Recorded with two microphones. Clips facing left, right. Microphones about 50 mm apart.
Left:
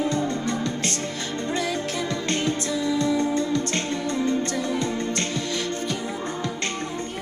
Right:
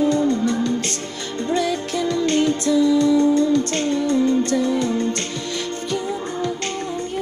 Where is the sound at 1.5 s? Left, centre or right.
Left.